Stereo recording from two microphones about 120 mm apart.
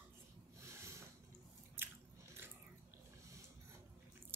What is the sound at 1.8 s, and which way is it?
Biting, 20° right (ahead or behind).